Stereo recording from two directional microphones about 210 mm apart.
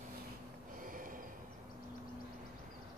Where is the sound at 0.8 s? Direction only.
40° right (ahead or behind).